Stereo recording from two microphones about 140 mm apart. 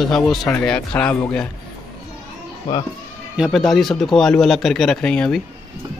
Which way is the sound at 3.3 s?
Centre (ahead or behind).